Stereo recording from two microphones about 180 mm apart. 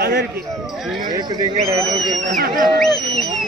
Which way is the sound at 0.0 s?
65° right (ahead or behind).